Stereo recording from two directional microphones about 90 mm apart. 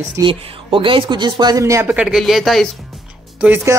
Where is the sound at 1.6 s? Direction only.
35° right (ahead or behind).